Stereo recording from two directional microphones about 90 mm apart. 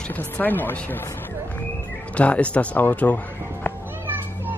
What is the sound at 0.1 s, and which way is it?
Speech, 20° left (ahead or behind).